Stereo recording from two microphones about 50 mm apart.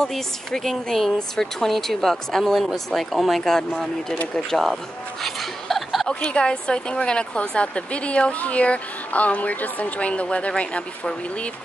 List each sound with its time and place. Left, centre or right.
0.0 s speech: centre
6.2 s a woman's voice: centre